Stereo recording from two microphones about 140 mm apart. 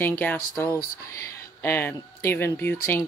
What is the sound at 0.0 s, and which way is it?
Speech, 15° left (ahead or behind).